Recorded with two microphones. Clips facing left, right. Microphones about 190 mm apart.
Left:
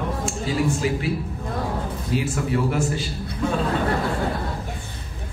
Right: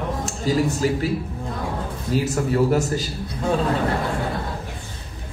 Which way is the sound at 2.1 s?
40° right (ahead or behind).